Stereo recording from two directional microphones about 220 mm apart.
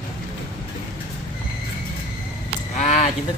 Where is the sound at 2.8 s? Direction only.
30° left (ahead or behind).